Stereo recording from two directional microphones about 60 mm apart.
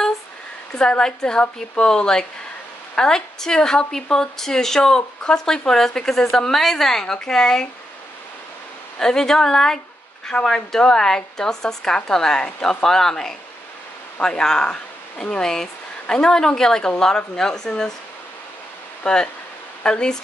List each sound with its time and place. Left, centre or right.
0.7 s a woman's voice: centre
9.0 s a woman's voice: centre
19.1 s a woman's voice: centre